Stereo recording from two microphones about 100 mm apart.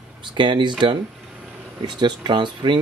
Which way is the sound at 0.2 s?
50° right (ahead or behind).